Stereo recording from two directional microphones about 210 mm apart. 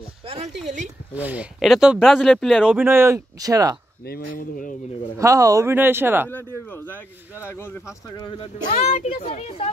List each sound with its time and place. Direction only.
1.1 s speech: 5° right (ahead or behind)
4.4 s a child's voice: 40° left (ahead or behind)
5.2 s speech: 15° right (ahead or behind)
6.3 s speech: 10° left (ahead or behind)
8.7 s a child's voice: 30° left (ahead or behind)